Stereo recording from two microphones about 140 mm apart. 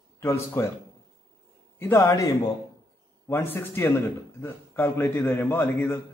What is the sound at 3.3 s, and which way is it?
A man's voice, 15° left (ahead or behind).